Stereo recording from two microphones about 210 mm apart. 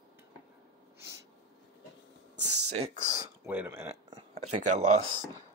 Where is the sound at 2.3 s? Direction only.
90° right.